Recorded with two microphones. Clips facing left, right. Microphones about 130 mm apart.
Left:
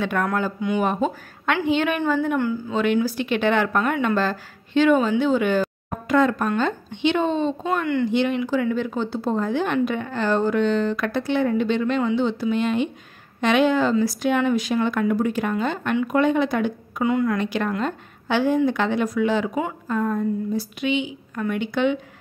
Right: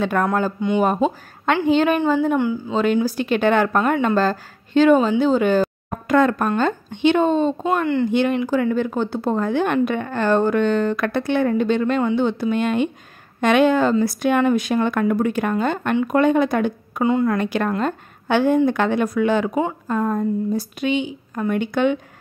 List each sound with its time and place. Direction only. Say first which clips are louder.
0.0 s speech: right 3 dB; 40° right (ahead or behind)
0.6 s a woman's voice: right 4 dB; 25° right (ahead or behind)
0.8 s speech: right 3 dB; 40° right (ahead or behind)
2.0 s a woman's voice: right 3 dB; 25° right (ahead or behind)
2.7 s speech: right 2 dB; 35° right (ahead or behind)
6.0 s speech: right 2 dB; 55° right (ahead or behind)
7.7 s speech: right 1 dB; 30° right (ahead or behind)
8.1 s a woman's voice: right 2 dB; 50° right (ahead or behind)
17.0 s speech: right 3 dB; 30° right (ahead or behind)
17.4 s a woman's voice: right 3 dB; 50° right (ahead or behind)
19.5 s speech: right 3 dB; 35° right (ahead or behind)